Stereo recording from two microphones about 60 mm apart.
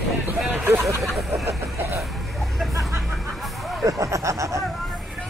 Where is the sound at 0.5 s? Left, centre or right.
Right.